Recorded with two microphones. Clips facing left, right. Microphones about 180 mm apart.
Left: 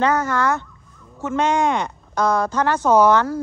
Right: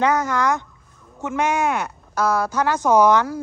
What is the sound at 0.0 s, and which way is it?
Speech, 15° right (ahead or behind).